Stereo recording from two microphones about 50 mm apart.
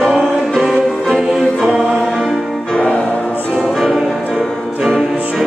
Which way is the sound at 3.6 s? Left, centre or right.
Centre.